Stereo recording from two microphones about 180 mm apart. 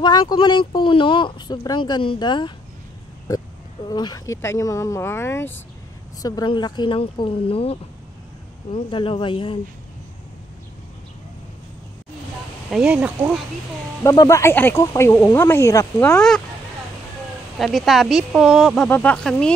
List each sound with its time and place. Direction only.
0.0 s speech: 25° left (ahead or behind)
6.2 s speech: 25° left (ahead or behind)
12.6 s speech: 5° right (ahead or behind)
14.0 s speech: 20° left (ahead or behind)
16.2 s speech: 5° left (ahead or behind)
17.6 s speech: centre (ahead or behind)